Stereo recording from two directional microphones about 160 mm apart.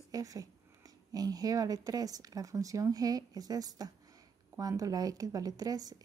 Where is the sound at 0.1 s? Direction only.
20° right (ahead or behind).